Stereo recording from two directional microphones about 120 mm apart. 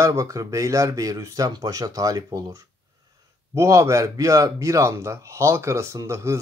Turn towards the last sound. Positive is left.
turn(degrees=-25)  # may be behind; listen again after turning